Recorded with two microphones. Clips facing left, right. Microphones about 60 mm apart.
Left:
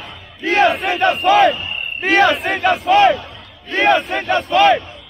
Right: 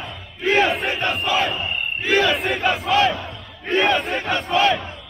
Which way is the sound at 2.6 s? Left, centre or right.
Left.